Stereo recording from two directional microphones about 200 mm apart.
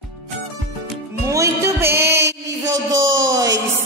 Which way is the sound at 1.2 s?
15° right (ahead or behind).